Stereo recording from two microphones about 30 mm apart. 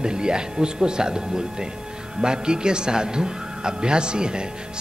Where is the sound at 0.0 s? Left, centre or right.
Right.